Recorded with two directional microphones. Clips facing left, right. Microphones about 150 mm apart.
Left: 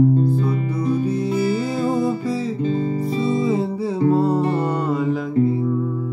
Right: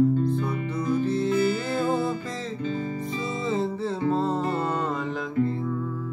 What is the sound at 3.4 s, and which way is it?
Music, 10° left (ahead or behind).